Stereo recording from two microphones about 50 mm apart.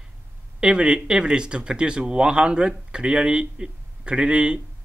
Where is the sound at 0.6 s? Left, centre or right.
Centre.